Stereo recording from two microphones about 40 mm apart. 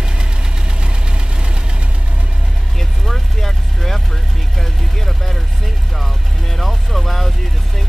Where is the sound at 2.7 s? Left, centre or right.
Centre.